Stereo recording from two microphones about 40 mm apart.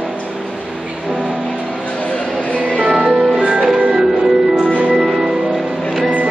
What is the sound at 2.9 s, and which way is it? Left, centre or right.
Music, centre.